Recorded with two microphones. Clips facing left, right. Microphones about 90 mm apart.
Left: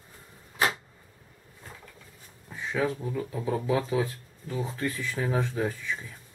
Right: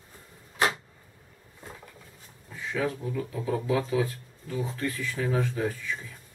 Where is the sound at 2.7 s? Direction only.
20° left (ahead or behind).